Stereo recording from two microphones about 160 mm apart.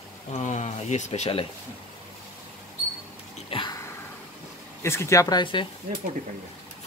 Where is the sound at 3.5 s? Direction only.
30° left (ahead or behind).